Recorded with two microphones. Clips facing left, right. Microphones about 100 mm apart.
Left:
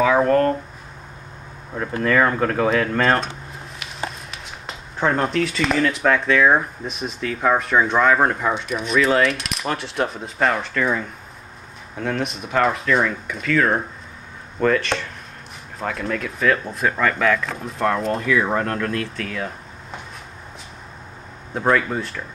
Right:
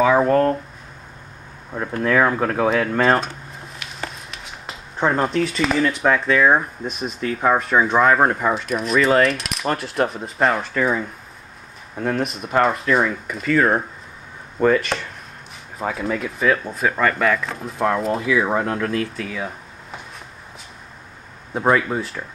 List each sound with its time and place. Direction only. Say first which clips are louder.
0.0 s speech: right 1 dB; 5° right (ahead or behind)
1.7 s speech: even; centre (ahead or behind)
4.3 s speech: even; centre (ahead or behind)
21.5 s speech: right 1 dB; 5° right (ahead or behind)